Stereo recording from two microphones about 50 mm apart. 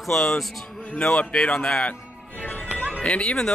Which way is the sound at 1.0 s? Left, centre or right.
Centre.